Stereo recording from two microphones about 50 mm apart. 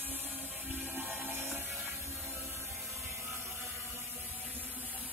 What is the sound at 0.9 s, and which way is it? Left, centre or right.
Music, right.